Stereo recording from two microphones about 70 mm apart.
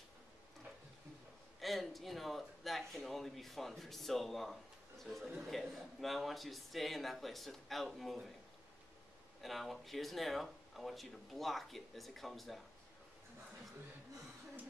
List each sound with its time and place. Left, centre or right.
1.6 s speech: centre
9.4 s speech: centre